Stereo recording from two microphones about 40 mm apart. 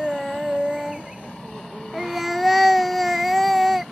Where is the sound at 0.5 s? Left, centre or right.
Right.